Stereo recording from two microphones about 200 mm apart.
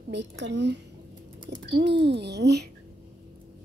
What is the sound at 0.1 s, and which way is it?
Speech, 60° right (ahead or behind).